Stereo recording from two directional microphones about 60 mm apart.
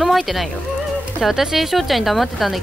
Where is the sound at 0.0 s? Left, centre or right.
Centre.